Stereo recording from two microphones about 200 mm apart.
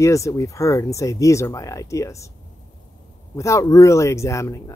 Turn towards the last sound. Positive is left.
turn(degrees=15)  # may be behind; listen again after turning